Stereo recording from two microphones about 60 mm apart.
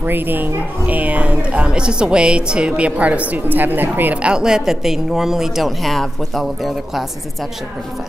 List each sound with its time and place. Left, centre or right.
0.0 s speech: right
4.2 s a woman's voice: centre